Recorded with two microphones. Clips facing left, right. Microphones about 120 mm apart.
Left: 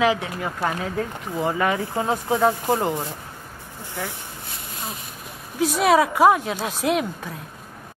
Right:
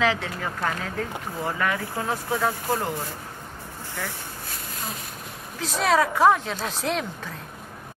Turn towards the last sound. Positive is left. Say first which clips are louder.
# left 5 dB
turn(degrees=10)  # may be behind; listen again after turning